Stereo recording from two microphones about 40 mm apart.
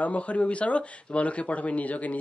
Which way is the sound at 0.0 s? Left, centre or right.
Left.